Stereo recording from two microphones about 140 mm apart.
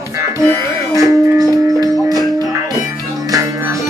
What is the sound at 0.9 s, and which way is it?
Music, 25° right (ahead or behind).